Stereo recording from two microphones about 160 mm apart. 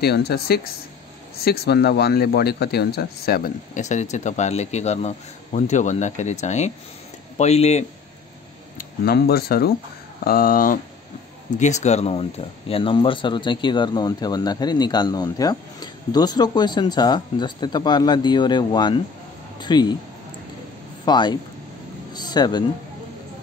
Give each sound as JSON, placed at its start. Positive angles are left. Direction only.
{"t": 0.0, "sound": "a man's voice", "side_deg": 80}
{"t": 3.8, "sound": "speech", "side_deg": 45}
{"t": 8.7, "sound": "speech", "side_deg": 70}
{"t": 11.5, "sound": "speech", "side_deg": 45}
{"t": 21.0, "sound": "speech", "side_deg": 25}
{"t": 22.1, "sound": "music", "side_deg": 25}